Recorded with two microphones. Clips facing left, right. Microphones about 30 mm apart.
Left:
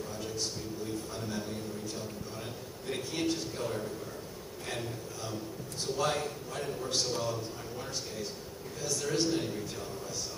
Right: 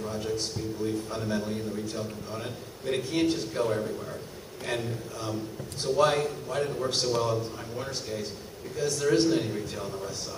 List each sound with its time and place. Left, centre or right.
0.0 s a man's voice: right
6.8 s a man's voice: right